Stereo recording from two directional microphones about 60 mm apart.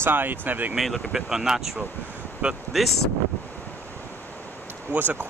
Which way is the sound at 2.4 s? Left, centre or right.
Centre.